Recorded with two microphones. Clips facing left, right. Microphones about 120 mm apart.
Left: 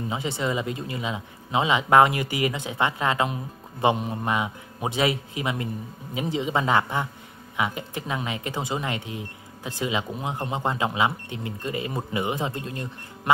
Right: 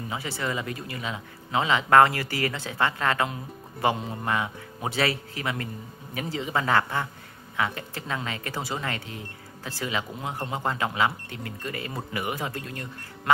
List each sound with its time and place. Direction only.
0.1 s speech: 20° left (ahead or behind)